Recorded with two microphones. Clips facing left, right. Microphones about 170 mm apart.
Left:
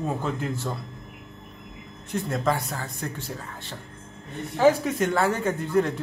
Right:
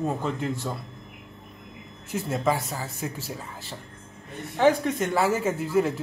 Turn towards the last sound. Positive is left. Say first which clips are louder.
# even
turn(degrees=-5)  # may be behind; listen again after turning